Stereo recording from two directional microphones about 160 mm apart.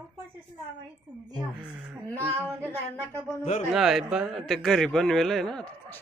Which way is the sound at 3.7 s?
5° right (ahead or behind).